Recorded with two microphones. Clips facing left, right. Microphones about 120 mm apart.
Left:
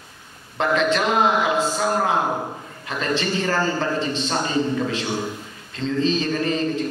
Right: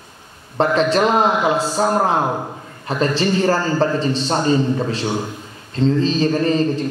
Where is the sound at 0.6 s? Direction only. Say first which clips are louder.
Right 4 dB; 35° right (ahead or behind).